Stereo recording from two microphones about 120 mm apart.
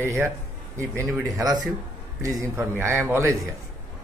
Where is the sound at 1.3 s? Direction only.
35° right (ahead or behind).